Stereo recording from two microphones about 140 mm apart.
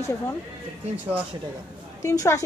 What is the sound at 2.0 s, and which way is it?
Speech, 20° left (ahead or behind).